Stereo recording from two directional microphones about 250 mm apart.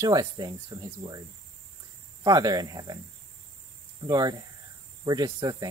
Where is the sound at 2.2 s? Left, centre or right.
Centre.